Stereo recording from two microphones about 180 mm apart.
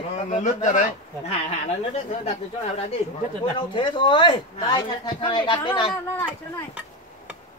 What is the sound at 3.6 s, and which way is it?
A woman's voice, 25° left (ahead or behind).